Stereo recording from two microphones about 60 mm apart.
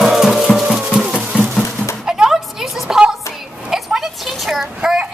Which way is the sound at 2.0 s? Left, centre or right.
Centre.